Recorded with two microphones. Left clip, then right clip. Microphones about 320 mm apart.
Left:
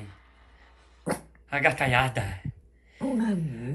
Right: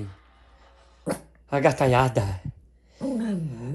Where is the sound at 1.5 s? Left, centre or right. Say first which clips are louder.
Right 3 dB; centre.